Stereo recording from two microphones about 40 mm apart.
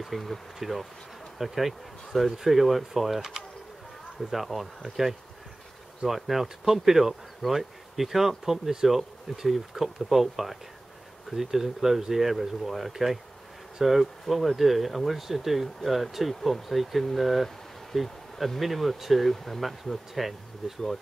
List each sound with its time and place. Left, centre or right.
0.0 s speech: centre
3.2 s speech: centre
4.2 s speech: centre